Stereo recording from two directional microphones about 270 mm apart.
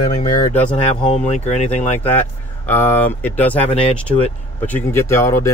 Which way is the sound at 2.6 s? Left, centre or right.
Centre.